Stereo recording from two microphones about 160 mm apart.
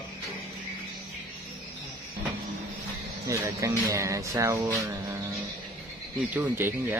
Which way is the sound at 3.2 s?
20° right (ahead or behind).